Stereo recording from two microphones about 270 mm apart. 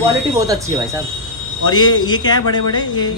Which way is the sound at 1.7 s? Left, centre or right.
Centre.